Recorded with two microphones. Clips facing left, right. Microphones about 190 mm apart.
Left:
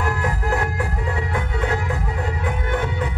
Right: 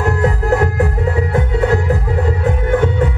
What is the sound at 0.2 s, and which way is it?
Music, 40° right (ahead or behind).